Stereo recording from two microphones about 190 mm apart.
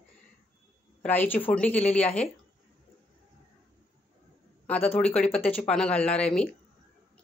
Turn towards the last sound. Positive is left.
turn(degrees=5)  # may be behind; listen again after turning